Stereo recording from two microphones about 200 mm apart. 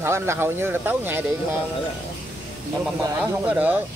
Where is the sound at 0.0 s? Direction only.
15° right (ahead or behind).